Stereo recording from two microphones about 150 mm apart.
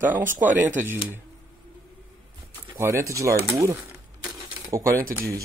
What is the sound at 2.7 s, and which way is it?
Speech, 20° right (ahead or behind).